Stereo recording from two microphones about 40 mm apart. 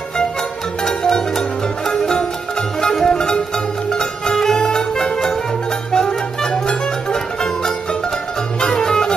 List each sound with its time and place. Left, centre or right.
0.8 s music: centre
3.1 s music: left
8.5 s music: centre